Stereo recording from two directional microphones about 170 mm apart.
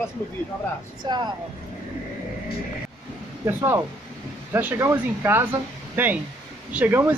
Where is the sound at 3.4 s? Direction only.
15° right (ahead or behind).